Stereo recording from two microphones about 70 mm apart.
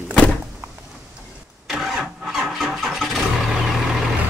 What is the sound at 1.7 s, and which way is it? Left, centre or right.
Vehicle, centre.